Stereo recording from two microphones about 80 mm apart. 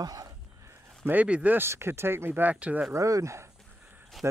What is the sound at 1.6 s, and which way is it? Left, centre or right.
Speech, right.